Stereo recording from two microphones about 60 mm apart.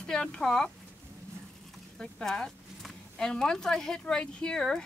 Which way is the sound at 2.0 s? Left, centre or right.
Centre.